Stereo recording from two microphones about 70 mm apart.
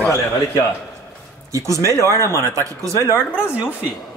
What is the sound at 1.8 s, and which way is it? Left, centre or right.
Speech, left.